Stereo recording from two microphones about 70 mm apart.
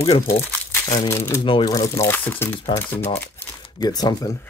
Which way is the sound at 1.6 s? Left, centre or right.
Left.